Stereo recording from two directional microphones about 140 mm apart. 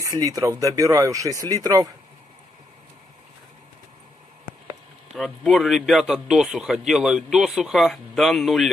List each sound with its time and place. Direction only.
0.0 s speech: 25° right (ahead or behind)
5.1 s speech: centre (ahead or behind)